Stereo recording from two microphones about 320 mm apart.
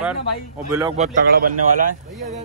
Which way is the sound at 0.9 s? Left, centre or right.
Right.